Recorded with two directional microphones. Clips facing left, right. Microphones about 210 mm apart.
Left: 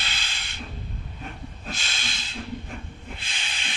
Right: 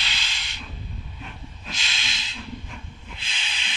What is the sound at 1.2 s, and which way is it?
Hiss, 45° left (ahead or behind).